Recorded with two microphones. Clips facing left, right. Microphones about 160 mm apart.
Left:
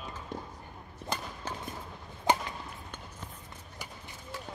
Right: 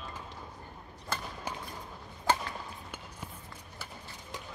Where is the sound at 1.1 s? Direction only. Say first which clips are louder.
Left 2 dB; 20° left (ahead or behind).